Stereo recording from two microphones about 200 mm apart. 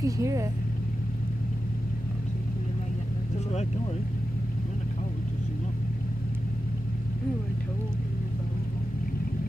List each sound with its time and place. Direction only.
0.0 s speech: 15° right (ahead or behind)